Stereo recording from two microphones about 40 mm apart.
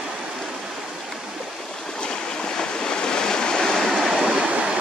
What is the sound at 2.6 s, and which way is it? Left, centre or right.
Waves, centre.